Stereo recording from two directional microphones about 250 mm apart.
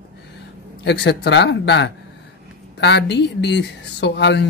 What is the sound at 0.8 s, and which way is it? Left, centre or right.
A woman's voice, left.